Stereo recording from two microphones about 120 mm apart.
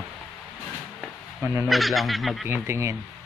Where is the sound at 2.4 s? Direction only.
20° right (ahead or behind).